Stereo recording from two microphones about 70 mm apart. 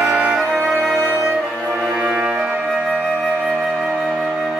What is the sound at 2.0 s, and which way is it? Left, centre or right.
Music, centre.